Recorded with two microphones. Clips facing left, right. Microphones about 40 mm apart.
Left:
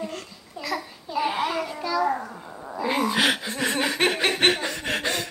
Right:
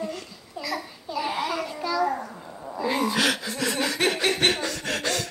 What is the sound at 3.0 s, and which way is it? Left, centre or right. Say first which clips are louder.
Chuckle: left 2 dB; left.